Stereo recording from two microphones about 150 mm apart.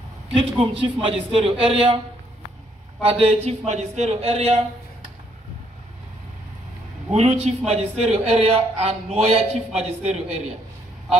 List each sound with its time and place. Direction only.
0.3 s a man's voice: 35° right (ahead or behind)
3.1 s a man's voice: 40° right (ahead or behind)
3.4 s a man's voice: 50° right (ahead or behind)
7.2 s a man's voice: 45° right (ahead or behind)